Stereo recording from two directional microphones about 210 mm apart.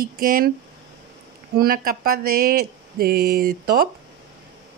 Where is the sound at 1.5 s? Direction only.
45° right (ahead or behind).